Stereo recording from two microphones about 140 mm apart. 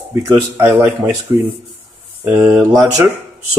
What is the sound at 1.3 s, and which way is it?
Speech, 20° right (ahead or behind).